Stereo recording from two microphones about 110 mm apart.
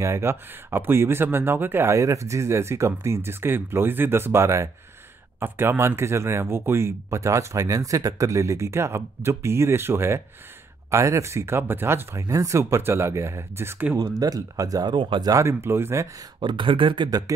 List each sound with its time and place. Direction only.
0.0 s speech: 25° right (ahead or behind)
13.9 s speech: 30° right (ahead or behind)
15.3 s speech: 25° right (ahead or behind)
16.3 s speech: 50° right (ahead or behind)